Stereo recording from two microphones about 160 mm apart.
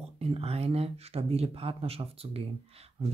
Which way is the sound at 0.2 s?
40° right (ahead or behind).